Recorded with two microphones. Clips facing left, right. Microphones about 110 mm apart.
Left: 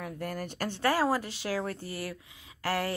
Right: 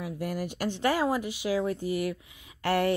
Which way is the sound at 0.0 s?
45° left (ahead or behind).